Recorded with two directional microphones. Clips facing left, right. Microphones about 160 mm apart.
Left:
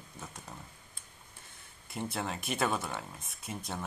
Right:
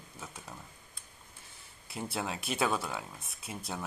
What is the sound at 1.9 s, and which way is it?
Speech, 5° right (ahead or behind).